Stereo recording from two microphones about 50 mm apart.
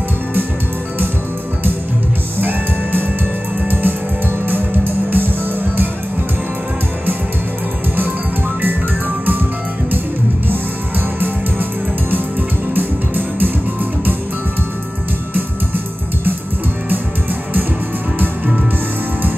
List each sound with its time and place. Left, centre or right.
2.3 s music: right
11.1 s music: right
12.7 s music: right